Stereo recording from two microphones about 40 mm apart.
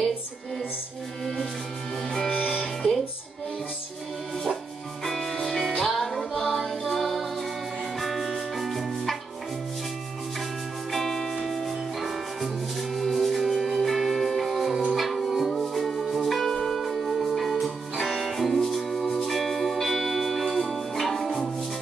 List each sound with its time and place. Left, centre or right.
1.2 s music: centre
5.0 s music: centre
5.4 s music: centre
6.3 s music: centre
6.6 s music: centre
10.9 s music: centre
19.3 s music: centre